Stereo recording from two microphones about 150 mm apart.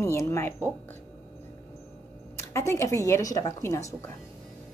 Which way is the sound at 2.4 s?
20° left (ahead or behind).